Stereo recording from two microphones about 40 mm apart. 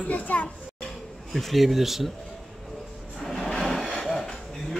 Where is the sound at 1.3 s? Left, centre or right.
Centre.